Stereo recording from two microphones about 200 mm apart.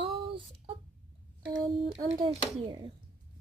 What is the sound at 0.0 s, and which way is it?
Child singing, 25° right (ahead or behind).